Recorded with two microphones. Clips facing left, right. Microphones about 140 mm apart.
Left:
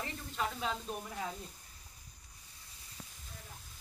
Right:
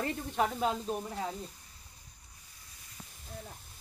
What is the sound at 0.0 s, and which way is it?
Speech, 50° right (ahead or behind).